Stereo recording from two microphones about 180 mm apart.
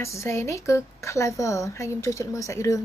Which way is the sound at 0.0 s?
15° left (ahead or behind).